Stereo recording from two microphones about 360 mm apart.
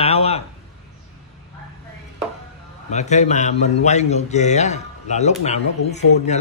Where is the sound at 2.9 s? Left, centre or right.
Centre.